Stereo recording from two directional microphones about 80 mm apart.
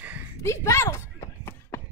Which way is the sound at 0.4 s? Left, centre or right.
Left.